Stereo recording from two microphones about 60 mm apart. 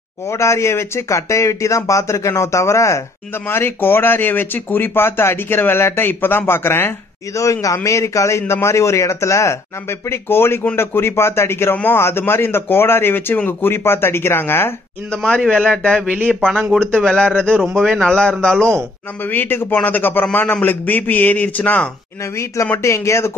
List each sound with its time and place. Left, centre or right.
0.3 s a man's voice: left
3.4 s speech: left
7.3 s a man's voice: left
11.7 s speech: left
12.0 s speech: left
15.3 s a man's voice: centre
19.3 s a man's voice: left
22.8 s speech: left